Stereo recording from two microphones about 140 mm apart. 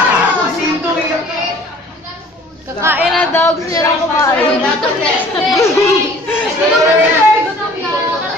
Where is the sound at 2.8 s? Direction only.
15° right (ahead or behind).